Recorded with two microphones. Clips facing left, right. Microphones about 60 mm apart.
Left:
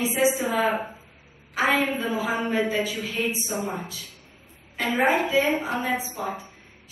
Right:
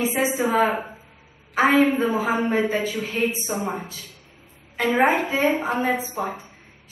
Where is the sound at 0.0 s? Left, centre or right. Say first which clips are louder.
Right 1 dB; right.